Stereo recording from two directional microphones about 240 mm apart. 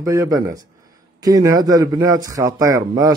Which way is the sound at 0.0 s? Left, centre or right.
Centre.